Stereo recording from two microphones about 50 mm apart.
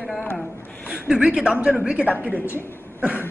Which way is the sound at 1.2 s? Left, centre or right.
Right.